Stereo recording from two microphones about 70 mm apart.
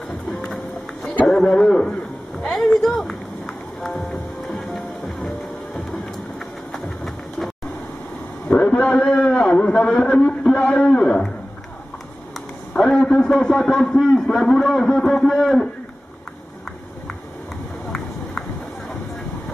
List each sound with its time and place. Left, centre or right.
0.3 s run: centre
1.2 s a man's voice: centre
4.5 s music: centre
6.7 s bird: centre
8.5 s a man's voice: centre
12.7 s a man's voice: centre